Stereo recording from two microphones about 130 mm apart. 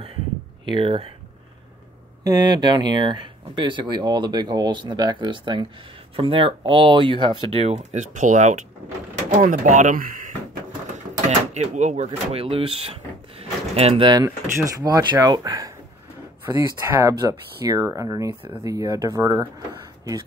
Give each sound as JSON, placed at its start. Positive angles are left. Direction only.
{"t": 0.7, "sound": "speech", "side_deg": -40}
{"t": 2.2, "sound": "speech", "side_deg": -30}
{"t": 11.2, "sound": "speech", "side_deg": -60}
{"t": 13.4, "sound": "a sound", "side_deg": -50}
{"t": 14.2, "sound": "speech", "side_deg": -25}